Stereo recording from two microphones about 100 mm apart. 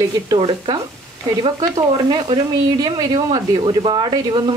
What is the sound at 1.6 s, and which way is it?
Speech, 45° right (ahead or behind).